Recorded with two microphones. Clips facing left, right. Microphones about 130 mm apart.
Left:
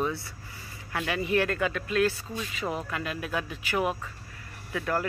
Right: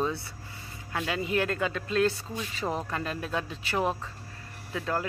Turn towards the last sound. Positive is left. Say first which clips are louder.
# left 1 dB
turn(degrees=-20)  # may be behind; listen again after turning